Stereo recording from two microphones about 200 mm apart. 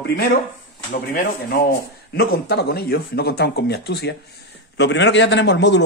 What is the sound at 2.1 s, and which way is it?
A man's voice, 55° left (ahead or behind).